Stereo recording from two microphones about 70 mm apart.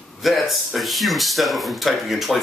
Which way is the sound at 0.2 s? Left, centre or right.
Centre.